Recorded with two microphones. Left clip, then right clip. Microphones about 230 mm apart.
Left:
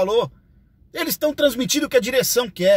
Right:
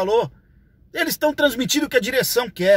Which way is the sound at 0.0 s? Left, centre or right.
Centre.